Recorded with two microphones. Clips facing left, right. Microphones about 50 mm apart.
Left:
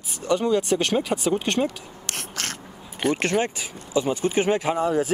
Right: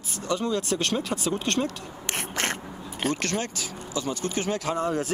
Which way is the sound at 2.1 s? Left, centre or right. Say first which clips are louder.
Right 3 dB; right.